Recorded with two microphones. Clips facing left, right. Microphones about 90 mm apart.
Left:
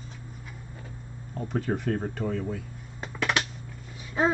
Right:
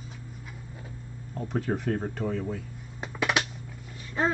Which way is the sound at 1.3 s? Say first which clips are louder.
Even; centre (ahead or behind).